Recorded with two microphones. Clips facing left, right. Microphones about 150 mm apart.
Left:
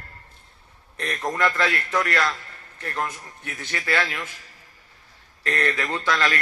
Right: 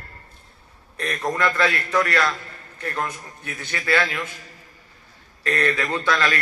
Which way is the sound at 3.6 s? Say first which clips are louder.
Right 3 dB; 25° left (ahead or behind).